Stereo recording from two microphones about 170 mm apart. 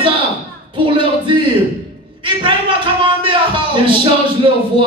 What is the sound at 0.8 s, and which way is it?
Music, 30° right (ahead or behind).